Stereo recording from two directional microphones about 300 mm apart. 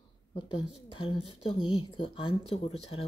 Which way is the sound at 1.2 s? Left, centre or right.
Left.